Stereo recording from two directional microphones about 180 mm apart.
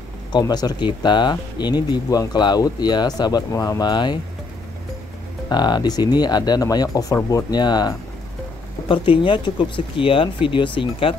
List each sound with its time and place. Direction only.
0.3 s speech: 20° left (ahead or behind)
5.5 s speech: 25° left (ahead or behind)